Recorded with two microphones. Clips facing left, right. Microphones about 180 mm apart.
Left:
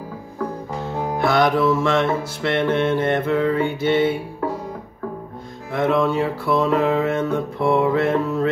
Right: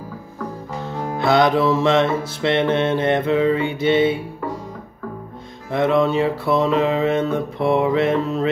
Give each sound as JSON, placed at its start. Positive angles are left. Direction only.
{"t": 1.2, "sound": "music", "side_deg": -20}
{"t": 5.7, "sound": "music", "side_deg": -20}